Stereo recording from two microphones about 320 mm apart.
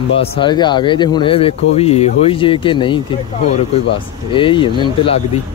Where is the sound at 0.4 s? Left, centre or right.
Centre.